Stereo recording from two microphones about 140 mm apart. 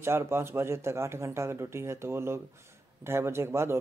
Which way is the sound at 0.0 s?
15° right (ahead or behind).